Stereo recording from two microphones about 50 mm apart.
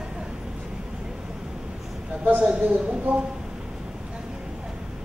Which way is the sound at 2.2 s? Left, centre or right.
Right.